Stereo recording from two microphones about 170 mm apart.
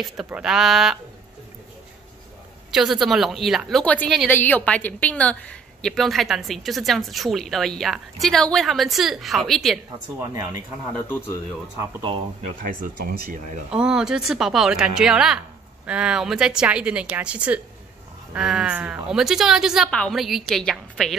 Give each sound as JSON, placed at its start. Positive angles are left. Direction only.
{"t": 0.0, "sound": "a woman's voice", "side_deg": -5}
{"t": 2.7, "sound": "a woman's voice", "side_deg": 0}
{"t": 10.9, "sound": "speech", "side_deg": 10}
{"t": 12.0, "sound": "speech", "side_deg": -35}
{"t": 13.7, "sound": "a woman's voice", "side_deg": -5}